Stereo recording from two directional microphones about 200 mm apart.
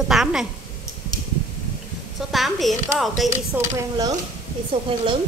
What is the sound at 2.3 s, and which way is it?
Speech, centre (ahead or behind).